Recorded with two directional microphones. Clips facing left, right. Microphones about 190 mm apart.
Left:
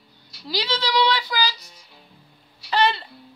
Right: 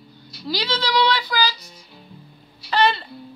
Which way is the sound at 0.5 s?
20° left (ahead or behind).